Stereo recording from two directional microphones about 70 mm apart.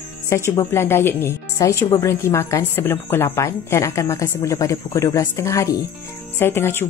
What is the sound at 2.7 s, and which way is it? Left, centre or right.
A woman's voice, left.